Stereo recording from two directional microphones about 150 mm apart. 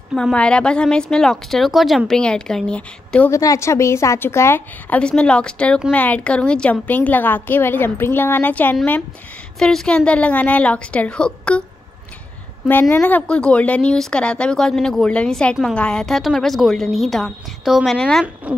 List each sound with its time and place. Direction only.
0.1 s speech: 5° left (ahead or behind)
3.3 s a woman's voice: 20° left (ahead or behind)
12.9 s speech: 10° left (ahead or behind)
18.2 s speech: 10° right (ahead or behind)